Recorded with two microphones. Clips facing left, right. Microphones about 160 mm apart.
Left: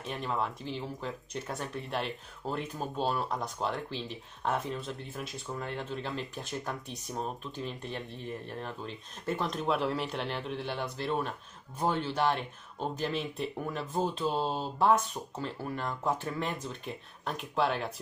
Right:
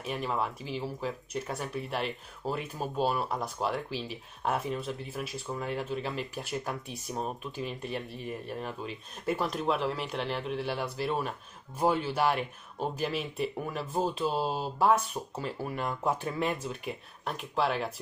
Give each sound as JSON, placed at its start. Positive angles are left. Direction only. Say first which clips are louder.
{"t": 0.0, "sound": "speech", "louder": "right 1 dB", "side_deg": -5}